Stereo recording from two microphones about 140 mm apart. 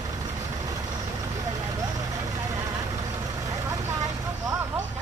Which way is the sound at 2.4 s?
25° right (ahead or behind).